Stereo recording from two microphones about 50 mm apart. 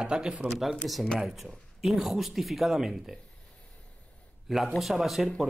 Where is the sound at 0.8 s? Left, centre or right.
Centre.